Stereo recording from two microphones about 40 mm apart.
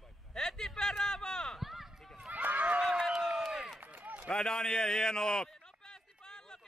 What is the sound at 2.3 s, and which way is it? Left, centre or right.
Run, right.